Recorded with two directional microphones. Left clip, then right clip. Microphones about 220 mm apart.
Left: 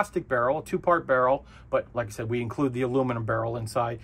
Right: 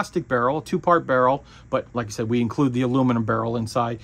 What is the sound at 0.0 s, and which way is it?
Speech, 45° right (ahead or behind).